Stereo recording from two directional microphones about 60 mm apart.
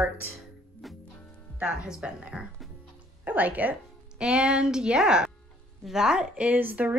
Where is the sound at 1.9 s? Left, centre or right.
Centre.